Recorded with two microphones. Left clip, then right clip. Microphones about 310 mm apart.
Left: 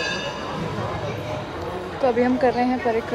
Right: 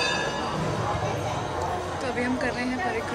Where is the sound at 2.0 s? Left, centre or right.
Centre.